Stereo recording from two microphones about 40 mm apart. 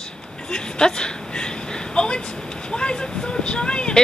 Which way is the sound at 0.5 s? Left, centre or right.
Centre.